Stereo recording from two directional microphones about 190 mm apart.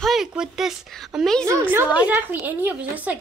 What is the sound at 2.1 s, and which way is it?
A woman's voice, 10° right (ahead or behind).